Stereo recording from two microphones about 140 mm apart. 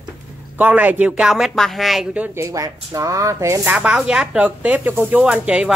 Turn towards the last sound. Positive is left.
turn(degrees=-5)  # may be behind; listen again after turning